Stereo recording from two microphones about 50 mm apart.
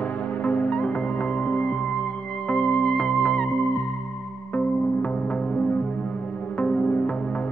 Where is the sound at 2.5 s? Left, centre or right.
Centre.